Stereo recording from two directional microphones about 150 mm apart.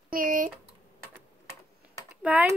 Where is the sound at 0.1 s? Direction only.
70° right (ahead or behind).